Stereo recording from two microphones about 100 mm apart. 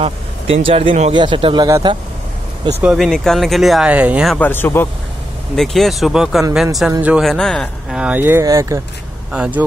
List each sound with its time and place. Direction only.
0.0 s speech: 70° right (ahead or behind)
1.1 s speech: 55° right (ahead or behind)
3.0 s speech: centre (ahead or behind)
3.8 s speech: 15° right (ahead or behind)
4.4 s speech: 20° left (ahead or behind)
5.6 s speech: centre (ahead or behind)
8.0 s speech: 15° right (ahead or behind)
8.5 s speech: 30° right (ahead or behind)
9.3 s speech: 10° right (ahead or behind)